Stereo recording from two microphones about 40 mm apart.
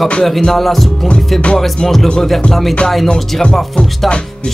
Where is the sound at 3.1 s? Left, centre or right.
Centre.